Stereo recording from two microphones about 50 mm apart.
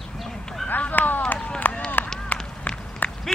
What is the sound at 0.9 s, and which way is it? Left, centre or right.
Run, left.